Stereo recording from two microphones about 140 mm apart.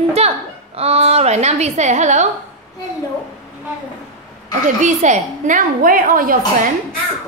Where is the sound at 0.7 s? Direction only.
45° right (ahead or behind).